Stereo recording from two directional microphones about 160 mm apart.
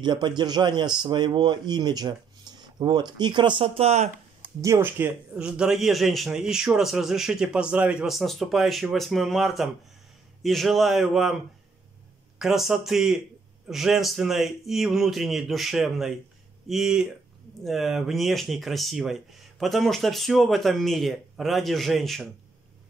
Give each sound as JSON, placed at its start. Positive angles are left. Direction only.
{"t": 0.0, "sound": "a man's voice", "side_deg": -30}
{"t": 4.6, "sound": "a man's voice", "side_deg": -15}
{"t": 12.4, "sound": "a man's voice", "side_deg": 0}